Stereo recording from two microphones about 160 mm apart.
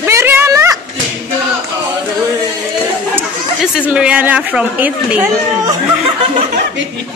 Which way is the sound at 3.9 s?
5° right (ahead or behind).